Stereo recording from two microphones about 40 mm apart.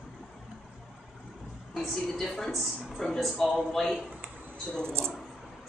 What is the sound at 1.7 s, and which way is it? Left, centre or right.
A woman's voice, centre.